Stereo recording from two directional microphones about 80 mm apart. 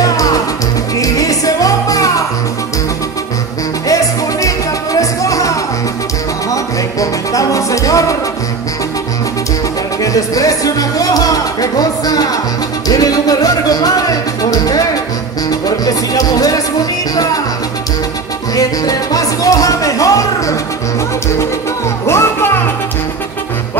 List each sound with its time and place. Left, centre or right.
0.0 s music: left
3.8 s music: left
10.0 s music: left
18.5 s music: left
22.0 s music: left